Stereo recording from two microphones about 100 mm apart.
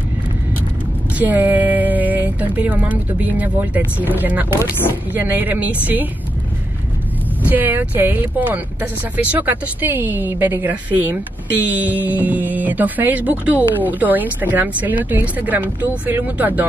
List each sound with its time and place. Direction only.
1.2 s speech: 15° right (ahead or behind)
7.4 s a woman's voice: 20° right (ahead or behind)